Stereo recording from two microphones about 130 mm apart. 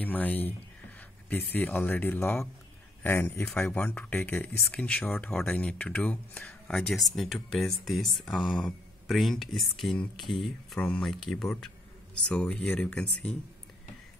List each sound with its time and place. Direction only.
0.0 s speech: 15° left (ahead or behind)